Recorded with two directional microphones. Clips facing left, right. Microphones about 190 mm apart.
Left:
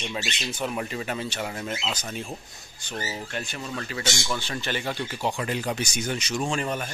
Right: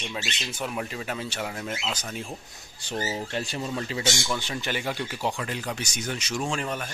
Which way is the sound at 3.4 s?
35° right (ahead or behind).